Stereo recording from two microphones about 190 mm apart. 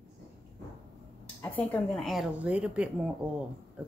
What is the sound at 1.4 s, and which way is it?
A woman's voice, 10° left (ahead or behind).